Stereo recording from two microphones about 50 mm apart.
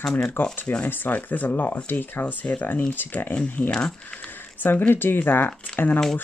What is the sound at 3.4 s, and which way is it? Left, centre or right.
Speech, centre.